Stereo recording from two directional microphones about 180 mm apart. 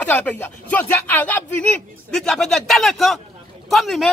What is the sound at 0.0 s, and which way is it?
A man's voice, 10° left (ahead or behind).